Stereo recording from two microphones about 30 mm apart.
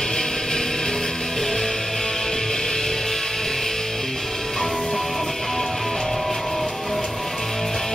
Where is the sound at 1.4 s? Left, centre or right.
Centre.